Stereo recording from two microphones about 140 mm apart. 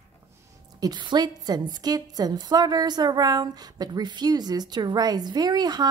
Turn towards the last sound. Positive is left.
turn(degrees=-30)  # may be behind; listen again after turning